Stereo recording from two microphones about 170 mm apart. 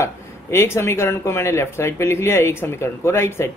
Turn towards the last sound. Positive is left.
turn(degrees=15)  # may be behind; listen again after turning